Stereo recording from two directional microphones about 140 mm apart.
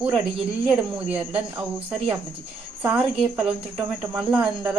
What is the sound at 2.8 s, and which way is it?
Speech, 5° right (ahead or behind).